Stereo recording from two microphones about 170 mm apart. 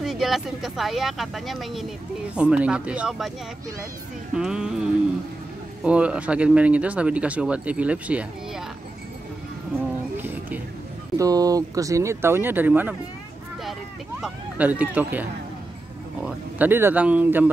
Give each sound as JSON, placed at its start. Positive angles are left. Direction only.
{"t": 0.0, "sound": "speech", "side_deg": 0}
{"t": 4.4, "sound": "speech", "side_deg": -5}
{"t": 5.9, "sound": "speech", "side_deg": -5}
{"t": 10.1, "sound": "a sound", "side_deg": -10}
{"t": 11.1, "sound": "speech", "side_deg": -20}
{"t": 14.2, "sound": "speech", "side_deg": -10}